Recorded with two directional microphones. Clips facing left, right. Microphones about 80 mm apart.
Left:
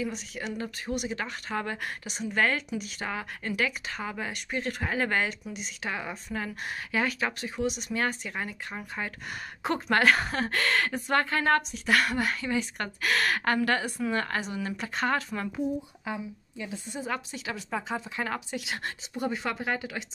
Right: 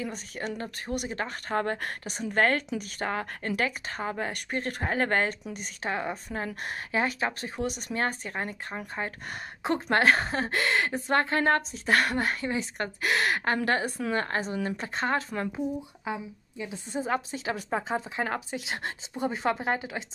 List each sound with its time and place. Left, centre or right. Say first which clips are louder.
0.0 s a woman's voice: left 1 dB; right
13.7 s a woman's voice: right 1 dB; right
16.1 s speech: right 1 dB; centre
16.9 s a woman's voice: right 6 dB; right